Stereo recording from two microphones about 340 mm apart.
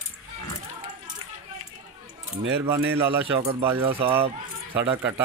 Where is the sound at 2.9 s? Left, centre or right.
Centre.